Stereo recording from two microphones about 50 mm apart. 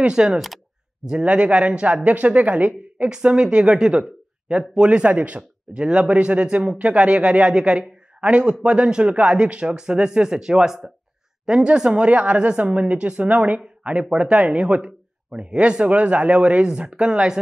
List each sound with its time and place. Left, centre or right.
0.0 s a man's voice: centre
3.1 s a man's voice: centre